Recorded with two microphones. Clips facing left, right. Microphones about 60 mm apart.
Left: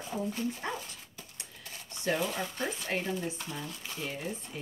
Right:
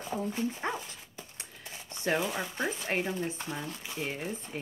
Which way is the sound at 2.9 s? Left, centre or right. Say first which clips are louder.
Right 2 dB; right.